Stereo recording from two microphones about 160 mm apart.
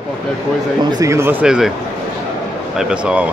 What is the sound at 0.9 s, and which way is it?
Speech, 20° right (ahead or behind).